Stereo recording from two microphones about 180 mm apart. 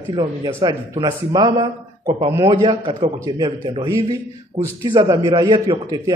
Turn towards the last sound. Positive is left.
turn(degrees=-25)  # may be behind; listen again after turning